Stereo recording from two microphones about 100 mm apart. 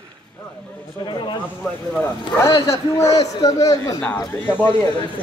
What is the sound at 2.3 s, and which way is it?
A man's voice, 30° left (ahead or behind).